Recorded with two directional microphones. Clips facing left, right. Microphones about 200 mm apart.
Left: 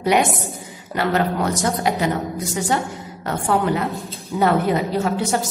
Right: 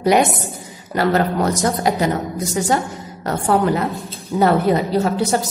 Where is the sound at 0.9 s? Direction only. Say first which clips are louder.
Right 3 dB; 40° right (ahead or behind).